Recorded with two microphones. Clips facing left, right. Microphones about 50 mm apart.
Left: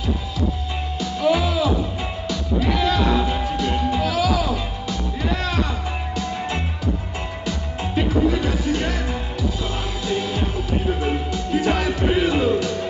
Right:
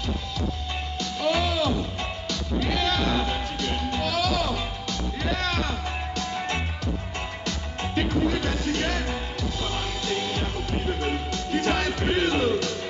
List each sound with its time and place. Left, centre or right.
1.0 s music: centre